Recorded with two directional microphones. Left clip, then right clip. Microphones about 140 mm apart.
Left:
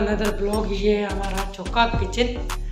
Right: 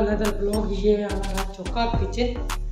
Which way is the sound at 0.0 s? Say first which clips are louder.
Even; centre (ahead or behind).